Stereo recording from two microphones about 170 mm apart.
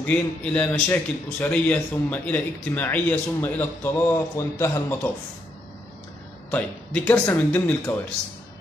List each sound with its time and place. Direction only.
0.0 s a man's voice: 10° left (ahead or behind)
6.5 s a man's voice: 10° left (ahead or behind)